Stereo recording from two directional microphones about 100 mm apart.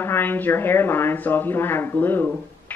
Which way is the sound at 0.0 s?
20° left (ahead or behind).